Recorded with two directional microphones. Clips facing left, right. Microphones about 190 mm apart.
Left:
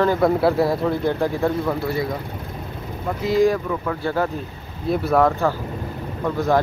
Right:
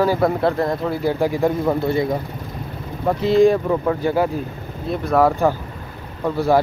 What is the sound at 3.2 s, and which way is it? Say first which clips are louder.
Speech: right 3 dB; 25° right (ahead or behind).